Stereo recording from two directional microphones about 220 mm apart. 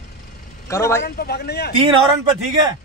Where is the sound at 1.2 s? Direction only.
45° left (ahead or behind).